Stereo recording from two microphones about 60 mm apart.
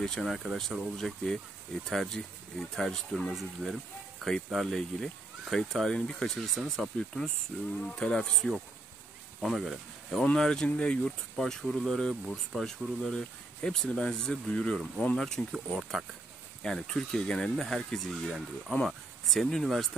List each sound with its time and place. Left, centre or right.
0.0 s speech: centre
7.8 s speech: centre
10.2 s speech: centre
13.6 s speech: centre